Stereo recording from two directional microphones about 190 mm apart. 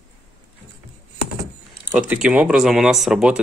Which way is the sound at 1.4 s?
5° right (ahead or behind).